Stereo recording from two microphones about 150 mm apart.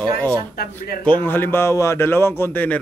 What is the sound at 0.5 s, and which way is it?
Speech, 90° left.